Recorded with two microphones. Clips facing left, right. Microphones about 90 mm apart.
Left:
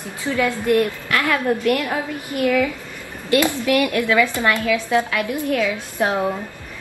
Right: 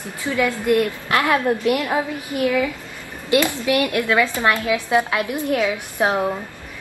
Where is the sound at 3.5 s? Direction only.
20° right (ahead or behind).